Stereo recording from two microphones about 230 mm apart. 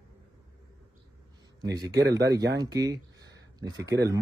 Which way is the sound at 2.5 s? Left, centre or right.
Centre.